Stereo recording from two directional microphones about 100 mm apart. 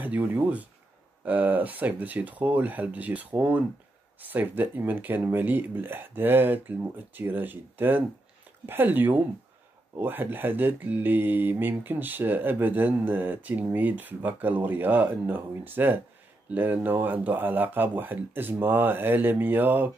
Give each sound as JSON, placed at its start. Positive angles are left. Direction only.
{"t": 0.0, "sound": "speech", "side_deg": -20}